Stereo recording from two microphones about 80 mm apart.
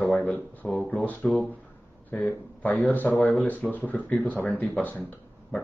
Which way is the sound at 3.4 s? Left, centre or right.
Left.